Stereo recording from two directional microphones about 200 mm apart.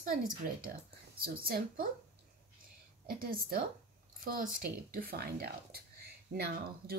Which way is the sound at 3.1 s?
45° right (ahead or behind).